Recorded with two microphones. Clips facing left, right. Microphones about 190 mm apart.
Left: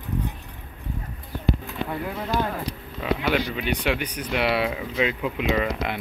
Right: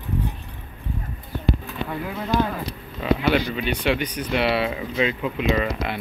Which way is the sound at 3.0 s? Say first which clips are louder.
Right 3 dB; 5° left (ahead or behind).